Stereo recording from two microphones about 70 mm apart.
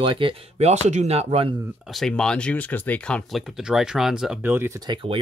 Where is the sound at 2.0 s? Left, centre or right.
Centre.